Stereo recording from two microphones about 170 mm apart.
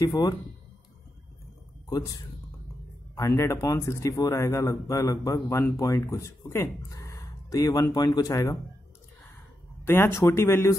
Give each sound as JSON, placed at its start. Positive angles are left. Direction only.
{"t": 0.0, "sound": "a man's voice", "side_deg": 20}
{"t": 1.9, "sound": "a man's voice", "side_deg": 20}
{"t": 3.2, "sound": "a man's voice", "side_deg": 15}
{"t": 9.8, "sound": "speech", "side_deg": 15}